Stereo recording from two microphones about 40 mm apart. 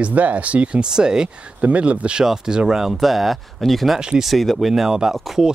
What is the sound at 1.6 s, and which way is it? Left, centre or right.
Speech, right.